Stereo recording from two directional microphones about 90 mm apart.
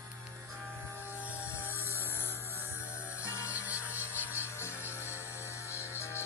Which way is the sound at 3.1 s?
30° left (ahead or behind).